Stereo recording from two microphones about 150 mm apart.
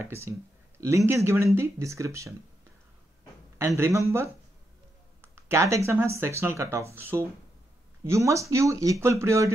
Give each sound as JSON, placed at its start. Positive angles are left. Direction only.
{"t": 0.0, "sound": "speech", "side_deg": -15}
{"t": 3.5, "sound": "a man's voice", "side_deg": -20}
{"t": 5.2, "sound": "speech", "side_deg": -15}